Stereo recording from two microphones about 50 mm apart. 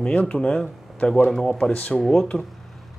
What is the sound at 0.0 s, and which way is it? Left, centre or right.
Speech, left.